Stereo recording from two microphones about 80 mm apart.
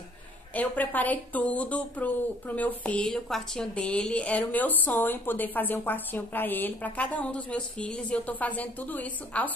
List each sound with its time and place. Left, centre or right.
0.6 s speech: left
3.1 s a woman's voice: centre